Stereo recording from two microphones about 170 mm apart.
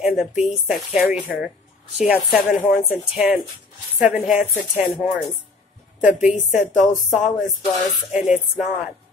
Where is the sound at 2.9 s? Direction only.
5° right (ahead or behind).